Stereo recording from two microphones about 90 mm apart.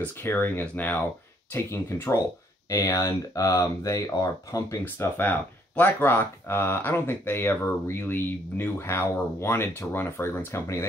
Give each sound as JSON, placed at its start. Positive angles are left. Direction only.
{"t": 0.0, "sound": "speech", "side_deg": 25}
{"t": 4.8, "sound": "speech", "side_deg": 20}